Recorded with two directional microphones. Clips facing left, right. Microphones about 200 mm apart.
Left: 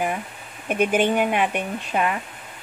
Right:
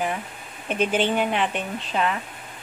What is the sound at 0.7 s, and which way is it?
A woman's voice, 10° left (ahead or behind).